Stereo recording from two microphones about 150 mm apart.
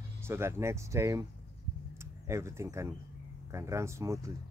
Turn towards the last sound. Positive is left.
turn(degrees=-20)  # may be behind; listen again after turning